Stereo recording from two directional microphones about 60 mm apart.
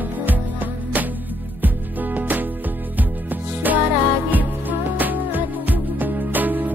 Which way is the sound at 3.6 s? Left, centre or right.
Right.